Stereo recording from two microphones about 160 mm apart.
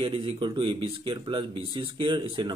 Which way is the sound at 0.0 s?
30° right (ahead or behind).